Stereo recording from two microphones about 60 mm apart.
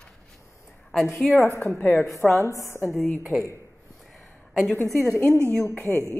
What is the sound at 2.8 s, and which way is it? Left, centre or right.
Speech, centre.